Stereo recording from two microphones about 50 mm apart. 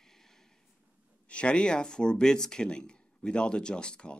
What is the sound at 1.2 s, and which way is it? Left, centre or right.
Speech, left.